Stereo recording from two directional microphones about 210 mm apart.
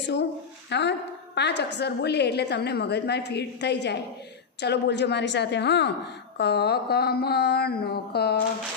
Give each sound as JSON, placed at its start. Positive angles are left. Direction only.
{"t": 0.7, "sound": "a woman's voice", "side_deg": 55}